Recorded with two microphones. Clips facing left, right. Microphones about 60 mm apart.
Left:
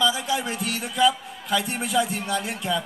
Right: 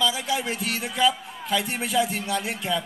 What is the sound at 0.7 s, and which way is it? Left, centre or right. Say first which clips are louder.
A man's voice: left 2 dB; right.